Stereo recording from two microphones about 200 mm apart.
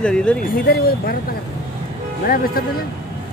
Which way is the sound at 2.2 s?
45° left (ahead or behind).